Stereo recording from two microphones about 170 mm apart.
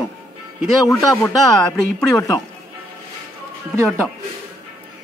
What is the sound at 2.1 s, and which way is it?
Speech, 20° left (ahead or behind).